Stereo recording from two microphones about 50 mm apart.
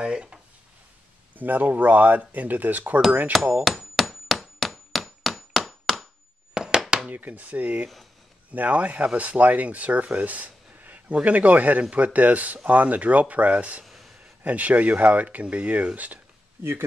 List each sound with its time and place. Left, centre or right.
0.0 s speech: centre
1.3 s speech: right
3.6 s hammer: centre
6.5 s a sound: centre
7.1 s speech: right
13.8 s a sound: centre
14.4 s speech: right